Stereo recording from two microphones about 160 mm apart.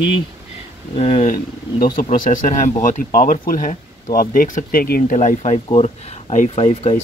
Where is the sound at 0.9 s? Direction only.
40° left (ahead or behind).